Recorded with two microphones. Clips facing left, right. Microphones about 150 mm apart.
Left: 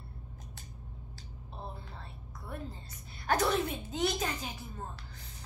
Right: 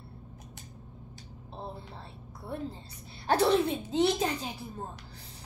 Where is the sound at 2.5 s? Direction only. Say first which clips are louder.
Right 6 dB; 30° right (ahead or behind).